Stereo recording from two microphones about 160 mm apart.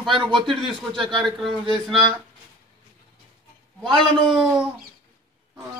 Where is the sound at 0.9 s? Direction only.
30° right (ahead or behind).